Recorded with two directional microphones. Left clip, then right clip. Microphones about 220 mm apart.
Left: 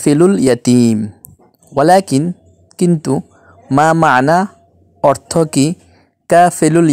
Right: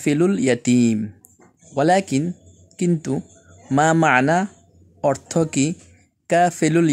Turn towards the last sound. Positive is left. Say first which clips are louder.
# left 7 dB
turn(degrees=25)  # may be behind; listen again after turning